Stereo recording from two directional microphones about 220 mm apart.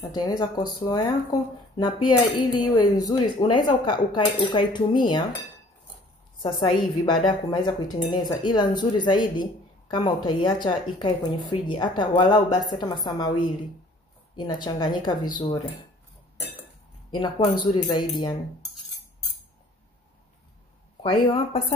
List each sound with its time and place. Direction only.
0.0 s speech: 20° left (ahead or behind)
2.0 s speech: 20° left (ahead or behind)
6.4 s speech: 20° left (ahead or behind)
17.1 s speech: 20° left (ahead or behind)
21.0 s speech: 25° left (ahead or behind)